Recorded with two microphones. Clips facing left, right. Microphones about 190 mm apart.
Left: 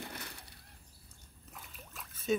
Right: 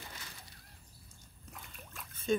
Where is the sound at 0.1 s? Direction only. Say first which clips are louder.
Left 5 dB; 60° left (ahead or behind).